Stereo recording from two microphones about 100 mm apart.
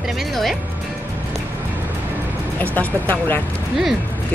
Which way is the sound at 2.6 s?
20° left (ahead or behind).